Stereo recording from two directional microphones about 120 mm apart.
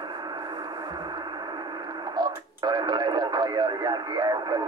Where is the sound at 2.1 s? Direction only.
35° right (ahead or behind).